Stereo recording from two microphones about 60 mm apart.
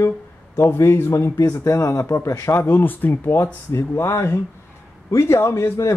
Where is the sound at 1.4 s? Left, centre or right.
Left.